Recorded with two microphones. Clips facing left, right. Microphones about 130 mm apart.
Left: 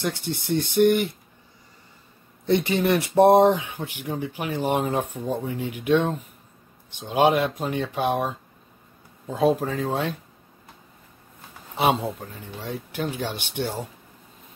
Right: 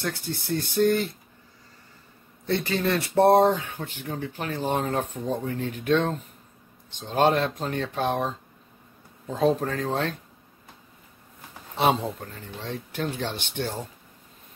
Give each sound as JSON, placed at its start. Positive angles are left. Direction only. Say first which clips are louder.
{"t": 0.0, "sound": "speech", "louder": "left 3 dB", "side_deg": 20}
{"t": 2.4, "sound": "speech", "louder": "left 4 dB", "side_deg": 20}
{"t": 11.7, "sound": "speech", "louder": "left 1 dB", "side_deg": 5}